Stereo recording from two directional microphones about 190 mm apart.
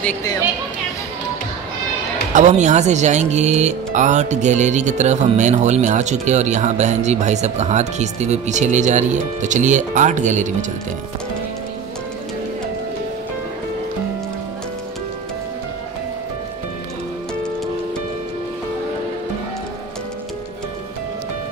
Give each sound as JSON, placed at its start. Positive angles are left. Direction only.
{"t": 2.3, "sound": "speech", "side_deg": -40}